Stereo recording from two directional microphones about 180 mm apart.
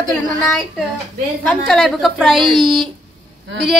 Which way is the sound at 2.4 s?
25° right (ahead or behind).